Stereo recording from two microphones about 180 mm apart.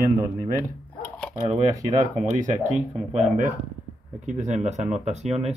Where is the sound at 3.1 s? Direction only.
45° right (ahead or behind).